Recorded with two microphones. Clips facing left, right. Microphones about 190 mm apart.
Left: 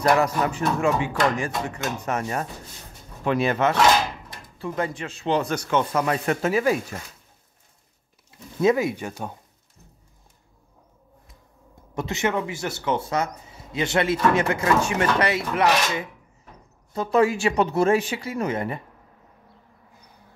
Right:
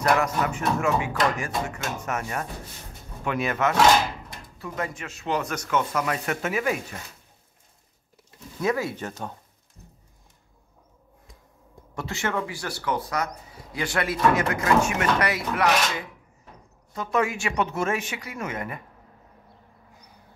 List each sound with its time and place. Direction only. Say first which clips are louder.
0.2 s speech: left 3 dB; 30° left (ahead or behind)
8.5 s speech: left 6 dB; 20° left (ahead or behind)
11.9 s speech: left 4 dB; 20° left (ahead or behind)